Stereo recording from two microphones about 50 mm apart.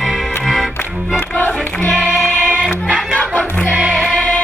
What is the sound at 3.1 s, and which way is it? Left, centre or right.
Music, left.